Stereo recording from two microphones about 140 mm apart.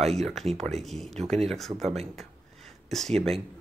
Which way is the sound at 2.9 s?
Centre (ahead or behind).